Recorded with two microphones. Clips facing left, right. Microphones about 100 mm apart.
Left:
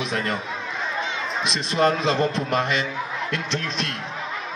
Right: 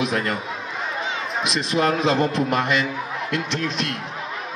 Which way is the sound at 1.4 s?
30° left (ahead or behind).